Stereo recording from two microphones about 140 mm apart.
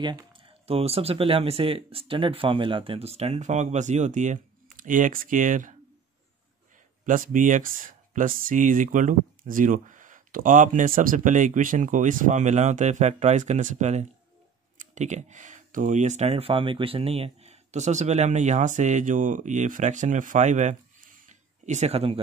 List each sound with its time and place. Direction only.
0.0 s speech: 35° right (ahead or behind); by 5.8 s 65° right (ahead or behind)
7.1 s speech: 70° right (ahead or behind)
21.3 s a sound: 55° right (ahead or behind)